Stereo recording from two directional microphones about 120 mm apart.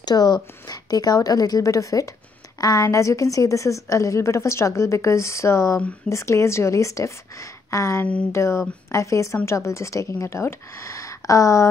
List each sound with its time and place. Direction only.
0.0 s a woman's voice: 35° left (ahead or behind)